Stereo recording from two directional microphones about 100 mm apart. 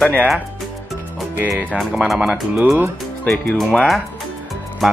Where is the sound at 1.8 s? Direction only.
Centre (ahead or behind).